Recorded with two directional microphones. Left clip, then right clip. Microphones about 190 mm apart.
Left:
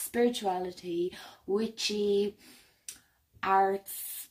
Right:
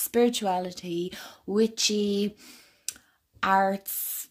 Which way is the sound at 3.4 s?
55° right (ahead or behind).